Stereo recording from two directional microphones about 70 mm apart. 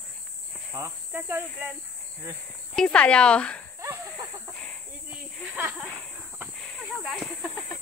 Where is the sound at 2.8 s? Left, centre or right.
Centre.